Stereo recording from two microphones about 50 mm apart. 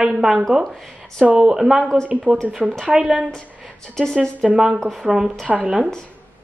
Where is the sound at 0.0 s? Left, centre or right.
Centre.